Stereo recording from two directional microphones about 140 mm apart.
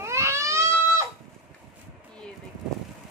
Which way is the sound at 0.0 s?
20° right (ahead or behind).